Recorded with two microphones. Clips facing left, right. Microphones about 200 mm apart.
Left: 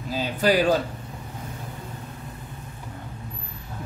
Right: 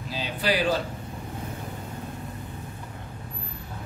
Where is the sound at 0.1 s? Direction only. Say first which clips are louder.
Left 5 dB; 45° left (ahead or behind).